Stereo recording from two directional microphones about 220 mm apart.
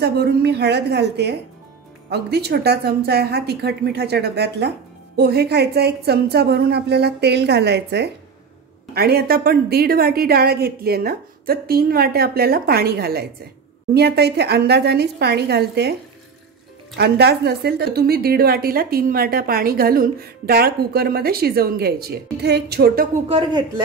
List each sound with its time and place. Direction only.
0.0 s speech: 45° right (ahead or behind)
16.9 s speech: 50° right (ahead or behind)
23.2 s speech: 25° right (ahead or behind)